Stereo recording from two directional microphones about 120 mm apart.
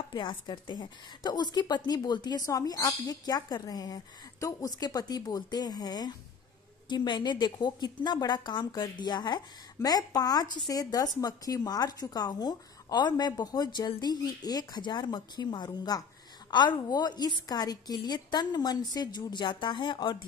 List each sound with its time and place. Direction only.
0.1 s a woman's voice: 40° left (ahead or behind)